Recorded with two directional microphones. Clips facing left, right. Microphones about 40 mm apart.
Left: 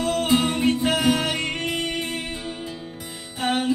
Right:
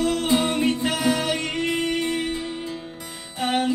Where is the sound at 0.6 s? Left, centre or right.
Left.